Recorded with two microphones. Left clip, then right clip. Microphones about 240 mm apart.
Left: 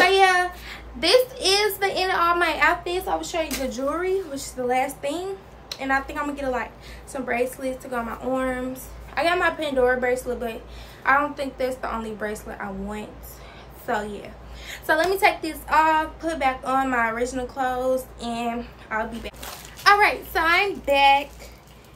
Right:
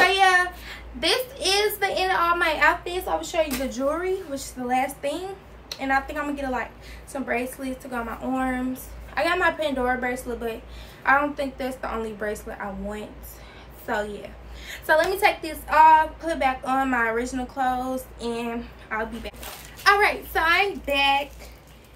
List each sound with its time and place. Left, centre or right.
0.0 s a woman's voice: centre